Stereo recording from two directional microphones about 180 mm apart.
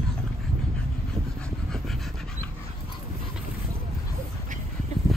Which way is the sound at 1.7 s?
Centre (ahead or behind).